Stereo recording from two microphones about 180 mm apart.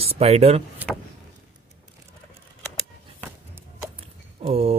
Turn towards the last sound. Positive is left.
turn(degrees=-35)  # may be behind; listen again after turning